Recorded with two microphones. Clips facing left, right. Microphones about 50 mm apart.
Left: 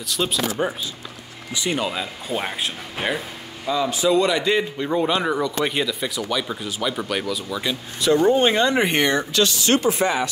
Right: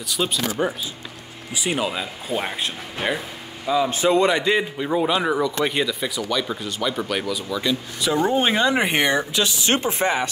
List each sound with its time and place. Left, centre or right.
0.2 s speech: centre
1.6 s speech: centre
3.9 s a man's voice: right
4.2 s speech: right
4.5 s speech: centre; by 10.3 s right